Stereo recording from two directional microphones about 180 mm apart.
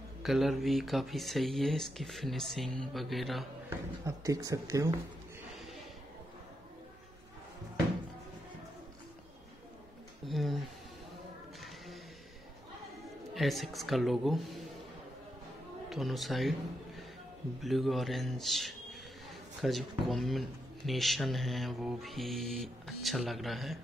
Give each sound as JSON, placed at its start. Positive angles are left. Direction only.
{"t": 0.2, "sound": "speech", "side_deg": 0}
{"t": 4.0, "sound": "speech", "side_deg": -20}
{"t": 10.2, "sound": "a sound", "side_deg": 0}
{"t": 11.6, "sound": "mechanisms", "side_deg": 0}
{"t": 13.3, "sound": "speech", "side_deg": 0}
{"t": 15.9, "sound": "a man's voice", "side_deg": 0}